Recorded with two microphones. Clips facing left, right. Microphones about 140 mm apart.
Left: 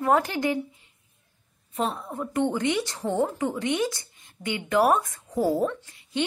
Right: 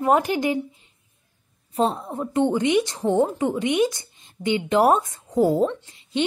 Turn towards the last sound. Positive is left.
turn(degrees=-20)  # may be behind; listen again after turning